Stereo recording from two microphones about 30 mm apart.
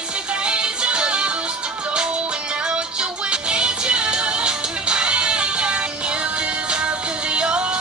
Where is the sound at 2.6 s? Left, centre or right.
Right.